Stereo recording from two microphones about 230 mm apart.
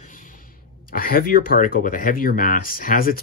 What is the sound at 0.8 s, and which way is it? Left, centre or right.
Speech, left.